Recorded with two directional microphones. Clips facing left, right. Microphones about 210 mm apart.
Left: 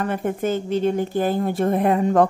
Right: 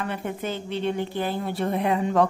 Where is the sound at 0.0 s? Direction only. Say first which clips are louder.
Left 6 dB; 45° left (ahead or behind).